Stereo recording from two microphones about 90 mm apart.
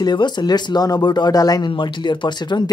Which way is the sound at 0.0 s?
55° left (ahead or behind).